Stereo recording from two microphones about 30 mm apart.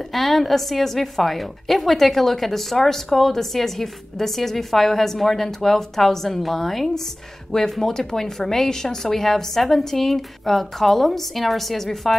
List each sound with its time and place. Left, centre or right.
0.1 s a woman's voice: centre